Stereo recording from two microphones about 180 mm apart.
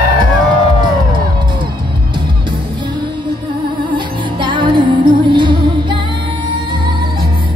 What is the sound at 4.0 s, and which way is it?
Music, 25° right (ahead or behind).